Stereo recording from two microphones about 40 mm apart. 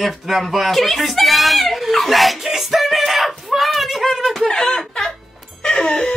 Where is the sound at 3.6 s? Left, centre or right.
Centre.